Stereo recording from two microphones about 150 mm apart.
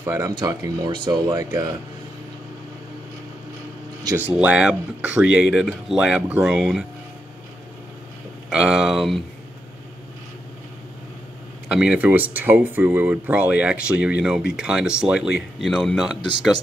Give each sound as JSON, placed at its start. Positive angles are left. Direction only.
{"t": 0.0, "sound": "speech", "side_deg": -20}
{"t": 4.0, "sound": "speech", "side_deg": -20}
{"t": 4.4, "sound": "speech", "side_deg": -10}
{"t": 8.5, "sound": "speech", "side_deg": -5}
{"t": 11.7, "sound": "speech", "side_deg": -5}